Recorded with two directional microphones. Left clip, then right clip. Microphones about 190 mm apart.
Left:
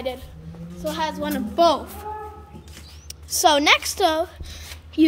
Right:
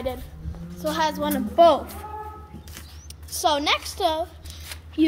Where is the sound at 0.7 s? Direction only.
35° right (ahead or behind).